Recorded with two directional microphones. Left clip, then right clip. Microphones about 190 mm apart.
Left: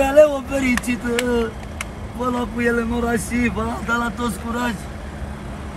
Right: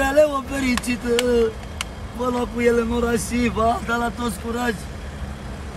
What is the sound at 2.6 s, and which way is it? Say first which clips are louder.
Speech: right 3 dB; 10° right (ahead or behind).